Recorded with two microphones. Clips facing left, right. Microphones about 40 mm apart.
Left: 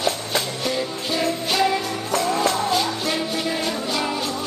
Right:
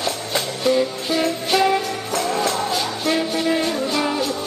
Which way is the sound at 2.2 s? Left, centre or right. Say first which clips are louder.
Even; centre.